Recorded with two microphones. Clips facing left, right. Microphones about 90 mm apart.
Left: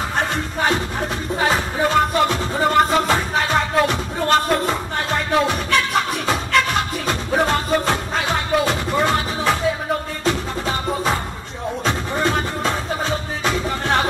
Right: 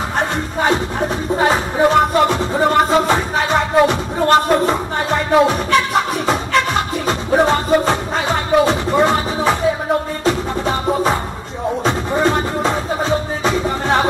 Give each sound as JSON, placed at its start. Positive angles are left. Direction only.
{"t": 0.2, "sound": "music", "side_deg": -5}
{"t": 7.1, "sound": "music", "side_deg": -5}
{"t": 11.8, "sound": "music", "side_deg": -5}